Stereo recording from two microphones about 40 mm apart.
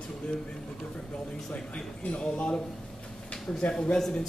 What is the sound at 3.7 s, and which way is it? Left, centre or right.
Speech, left.